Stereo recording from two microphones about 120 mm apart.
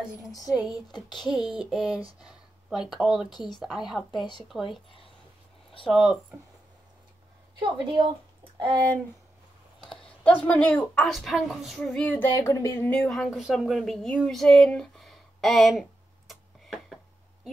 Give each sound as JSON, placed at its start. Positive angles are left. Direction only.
{"t": 0.5, "sound": "speech", "side_deg": -5}
{"t": 5.9, "sound": "speech", "side_deg": 0}
{"t": 7.5, "sound": "a woman's voice", "side_deg": -45}
{"t": 9.8, "sound": "speech", "side_deg": 10}
{"t": 11.1, "sound": "speech", "side_deg": 0}
{"t": 12.4, "sound": "speech", "side_deg": 25}
{"t": 13.1, "sound": "speech", "side_deg": 0}